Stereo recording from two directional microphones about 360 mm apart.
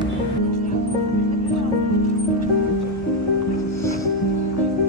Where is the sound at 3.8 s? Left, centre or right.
Centre.